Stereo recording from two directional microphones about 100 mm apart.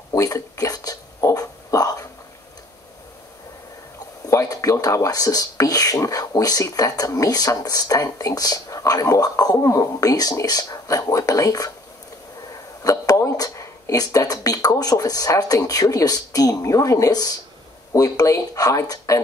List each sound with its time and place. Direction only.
0.1 s a sound: 35° left (ahead or behind)
4.3 s speech: 30° left (ahead or behind)
12.8 s speech: 35° left (ahead or behind)